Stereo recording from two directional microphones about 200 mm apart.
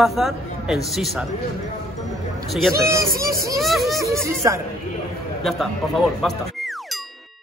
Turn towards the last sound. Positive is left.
turn(degrees=0)  # may be behind; listen again after turning